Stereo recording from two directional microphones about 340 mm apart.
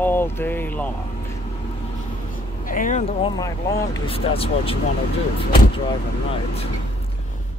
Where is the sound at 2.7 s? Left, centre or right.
Left.